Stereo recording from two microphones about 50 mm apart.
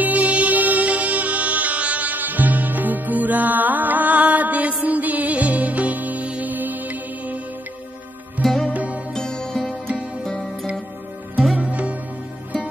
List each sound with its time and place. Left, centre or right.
0.0 s music: right
8.4 s music: centre
8.6 s music: right
9.1 s music: centre
11.5 s music: right